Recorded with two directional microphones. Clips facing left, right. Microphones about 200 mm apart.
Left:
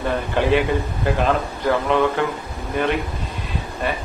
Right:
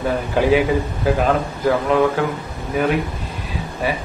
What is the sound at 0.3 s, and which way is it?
A man's voice, 5° right (ahead or behind).